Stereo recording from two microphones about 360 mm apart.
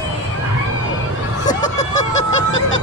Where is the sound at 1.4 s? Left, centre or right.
Centre.